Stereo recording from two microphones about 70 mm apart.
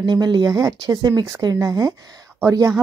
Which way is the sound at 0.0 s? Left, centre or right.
Right.